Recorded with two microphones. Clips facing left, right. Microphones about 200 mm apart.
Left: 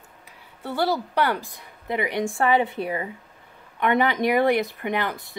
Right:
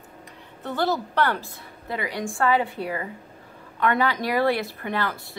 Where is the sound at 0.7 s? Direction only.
10° left (ahead or behind).